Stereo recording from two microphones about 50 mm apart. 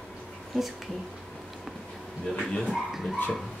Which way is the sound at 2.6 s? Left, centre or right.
Centre.